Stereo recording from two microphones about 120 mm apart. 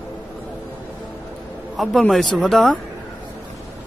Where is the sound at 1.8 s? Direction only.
Centre (ahead or behind).